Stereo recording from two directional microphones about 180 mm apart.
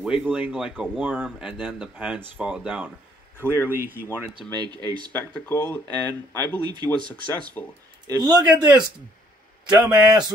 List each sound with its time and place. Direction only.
0.0 s speech: 5° right (ahead or behind)
4.6 s speech: 25° right (ahead or behind)
5.1 s speech: 10° left (ahead or behind)
6.6 s speech: 25° right (ahead or behind)
7.6 s speech: 25° left (ahead or behind)
8.1 s speech: 25° right (ahead or behind)